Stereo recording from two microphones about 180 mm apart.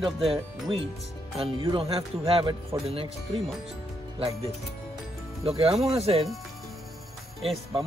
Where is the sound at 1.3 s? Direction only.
30° right (ahead or behind).